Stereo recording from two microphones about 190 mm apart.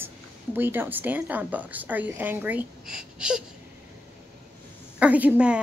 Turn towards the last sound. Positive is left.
turn(degrees=-5)  # may be behind; listen again after turning